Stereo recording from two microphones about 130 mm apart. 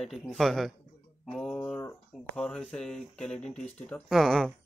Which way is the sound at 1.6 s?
15° left (ahead or behind).